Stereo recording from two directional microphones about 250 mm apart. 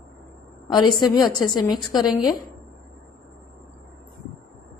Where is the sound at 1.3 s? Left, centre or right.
Centre.